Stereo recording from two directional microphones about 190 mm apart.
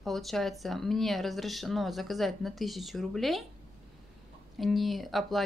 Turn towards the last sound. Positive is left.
turn(degrees=0)  # may be behind; listen again after turning